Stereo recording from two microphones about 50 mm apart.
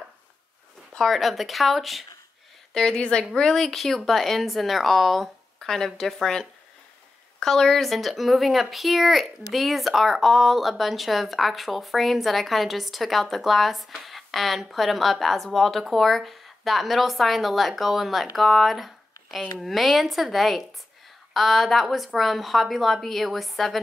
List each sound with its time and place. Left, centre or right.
0.9 s speech: centre
2.7 s a woman's voice: centre